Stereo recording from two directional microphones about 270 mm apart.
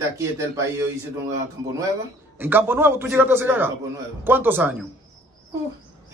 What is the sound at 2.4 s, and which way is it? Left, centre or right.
Speech, centre.